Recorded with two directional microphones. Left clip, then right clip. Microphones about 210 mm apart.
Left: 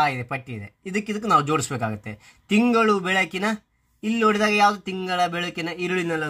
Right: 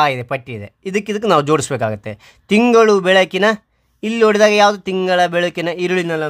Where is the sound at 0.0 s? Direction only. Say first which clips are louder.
Right 7 dB; 35° right (ahead or behind).